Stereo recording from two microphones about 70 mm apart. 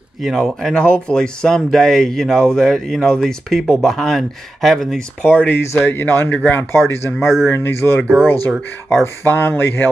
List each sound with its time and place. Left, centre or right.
0.2 s speech: centre
0.7 s speech: centre
5.2 s speech: left
7.2 s speech: centre
7.4 s speech: left
8.0 s speech: centre
9.0 s speech: left